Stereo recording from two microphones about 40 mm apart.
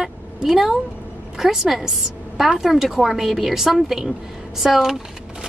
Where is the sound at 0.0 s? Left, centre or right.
Centre.